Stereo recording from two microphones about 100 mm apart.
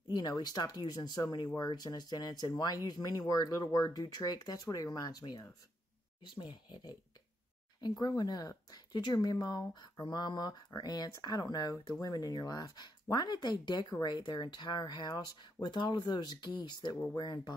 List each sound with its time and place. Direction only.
0.1 s speech: 40° left (ahead or behind)
8.0 s speech: 40° left (ahead or behind)